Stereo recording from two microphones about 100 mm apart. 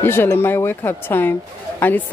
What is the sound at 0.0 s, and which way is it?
A woman's voice, 25° left (ahead or behind).